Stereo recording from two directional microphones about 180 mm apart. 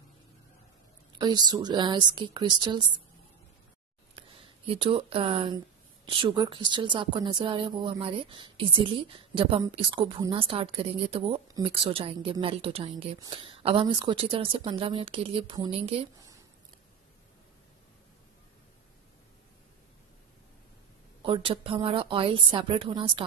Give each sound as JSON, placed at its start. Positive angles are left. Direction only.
{"t": 1.1, "sound": "a woman's voice", "side_deg": -25}
{"t": 4.1, "sound": "a woman's voice", "side_deg": -30}
{"t": 21.2, "sound": "a woman's voice", "side_deg": -30}